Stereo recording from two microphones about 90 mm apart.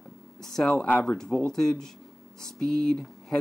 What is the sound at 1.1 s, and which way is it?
Speech, 5° left (ahead or behind).